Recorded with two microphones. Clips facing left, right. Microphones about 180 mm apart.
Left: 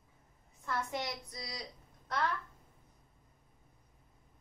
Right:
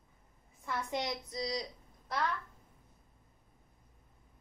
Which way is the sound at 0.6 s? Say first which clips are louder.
Right 1 dB; 15° right (ahead or behind).